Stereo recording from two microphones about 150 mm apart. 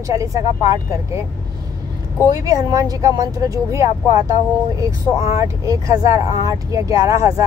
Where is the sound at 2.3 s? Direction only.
25° right (ahead or behind).